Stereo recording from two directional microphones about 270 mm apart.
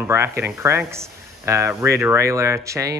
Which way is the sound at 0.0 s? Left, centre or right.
Centre.